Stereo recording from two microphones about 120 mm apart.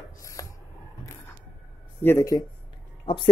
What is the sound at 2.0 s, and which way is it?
Speech, 15° left (ahead or behind).